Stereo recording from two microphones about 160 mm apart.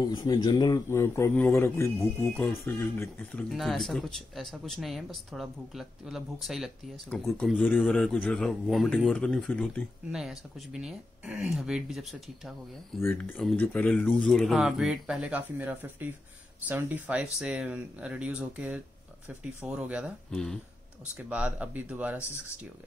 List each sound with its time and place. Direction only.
0.1 s speech: 25° left (ahead or behind)
0.9 s speech: 15° left (ahead or behind)
10.1 s speech: 5° right (ahead or behind)
13.0 s speech: 15° left (ahead or behind); by 20.1 s 10° right (ahead or behind)
20.2 s speech: 5° left (ahead or behind)
21.2 s speech: 10° right (ahead or behind)